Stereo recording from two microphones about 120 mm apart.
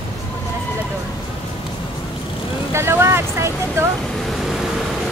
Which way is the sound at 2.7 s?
20° right (ahead or behind).